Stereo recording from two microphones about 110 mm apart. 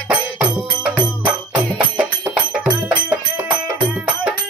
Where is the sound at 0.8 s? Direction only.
10° right (ahead or behind).